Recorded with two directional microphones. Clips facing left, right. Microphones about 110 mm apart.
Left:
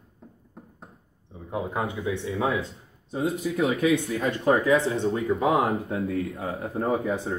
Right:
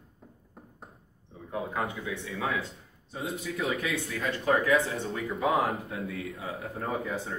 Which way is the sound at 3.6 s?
20° left (ahead or behind).